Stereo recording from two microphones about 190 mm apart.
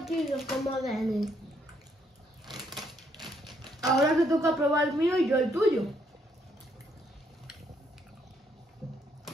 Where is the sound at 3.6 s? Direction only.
20° right (ahead or behind).